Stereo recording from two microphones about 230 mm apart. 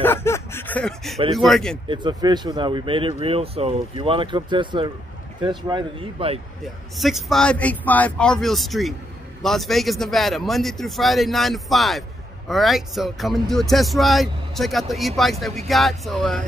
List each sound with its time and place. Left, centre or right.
0.0 s speech: centre
1.9 s speech: centre
6.6 s speech: centre